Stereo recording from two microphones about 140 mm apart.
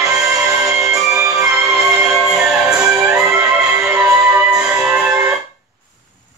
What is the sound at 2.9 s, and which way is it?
Music, 20° right (ahead or behind).